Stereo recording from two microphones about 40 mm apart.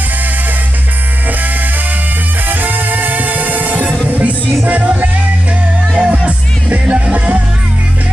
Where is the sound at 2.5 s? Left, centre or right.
Right.